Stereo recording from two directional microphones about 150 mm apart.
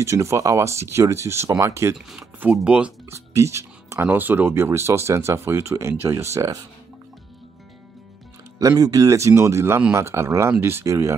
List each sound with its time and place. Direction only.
0.0 s speech: 20° right (ahead or behind)
2.0 s speech: 5° right (ahead or behind)
3.3 s speech: 20° right (ahead or behind)
8.5 s speech: 25° right (ahead or behind)